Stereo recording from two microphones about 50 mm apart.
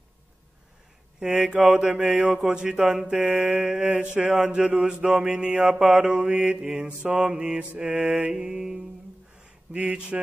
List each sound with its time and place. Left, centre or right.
1.2 s mantra: centre
3.3 s mantra: centre
4.0 s mantra: right
9.4 s speech: right